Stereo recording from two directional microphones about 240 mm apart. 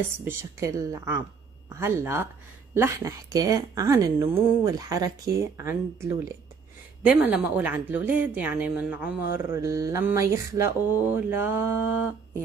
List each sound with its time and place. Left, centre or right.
0.2 s a woman's voice: centre